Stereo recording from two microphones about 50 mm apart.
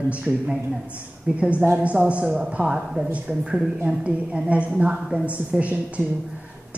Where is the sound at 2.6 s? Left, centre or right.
Centre.